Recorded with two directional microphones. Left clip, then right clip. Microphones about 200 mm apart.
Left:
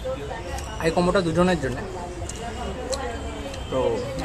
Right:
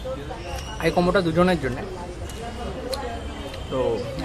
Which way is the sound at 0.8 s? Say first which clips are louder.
Right 1 dB; centre (ahead or behind).